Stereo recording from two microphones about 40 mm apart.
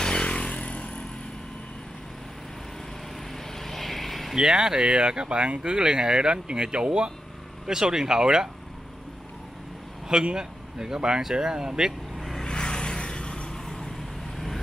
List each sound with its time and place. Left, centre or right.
0.0 s motorcycle: left
3.5 s vehicle: centre
4.4 s speech: centre
10.2 s speech: centre
12.2 s vehicle: centre
12.4 s vehicle: left
13.7 s vehicle: centre